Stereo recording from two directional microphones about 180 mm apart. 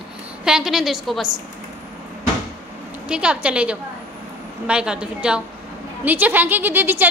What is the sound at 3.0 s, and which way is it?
A woman's voice, 5° right (ahead or behind).